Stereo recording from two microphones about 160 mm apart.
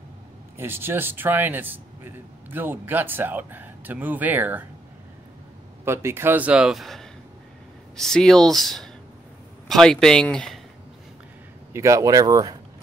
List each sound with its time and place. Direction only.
0.6 s speech: 15° right (ahead or behind)
5.9 s speech: 15° right (ahead or behind); by 10.6 s 5° left (ahead or behind)
11.7 s speech: 20° right (ahead or behind)